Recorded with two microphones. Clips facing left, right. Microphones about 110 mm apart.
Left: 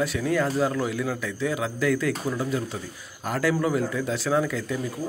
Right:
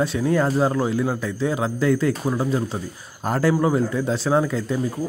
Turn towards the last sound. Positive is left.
turn(degrees=-30)  # may be behind; listen again after turning